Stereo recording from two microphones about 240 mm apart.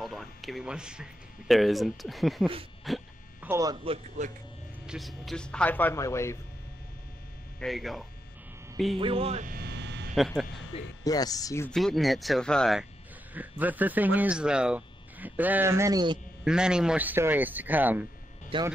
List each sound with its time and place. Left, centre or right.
0.0 s a sound: centre
1.5 s speech: centre
3.4 s speech: centre
4.8 s speech: centre
7.6 s speech: centre
8.9 s speech: right
10.1 s speech: centre
10.7 s speech: centre
16.4 s speech: centre
18.5 s speech: right